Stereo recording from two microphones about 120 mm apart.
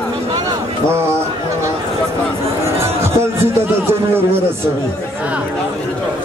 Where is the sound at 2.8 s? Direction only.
20° right (ahead or behind).